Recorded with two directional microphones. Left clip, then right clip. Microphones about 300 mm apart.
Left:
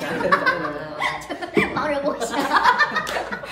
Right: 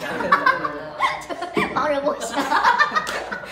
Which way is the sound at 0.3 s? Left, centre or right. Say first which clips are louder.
Right 2 dB; centre.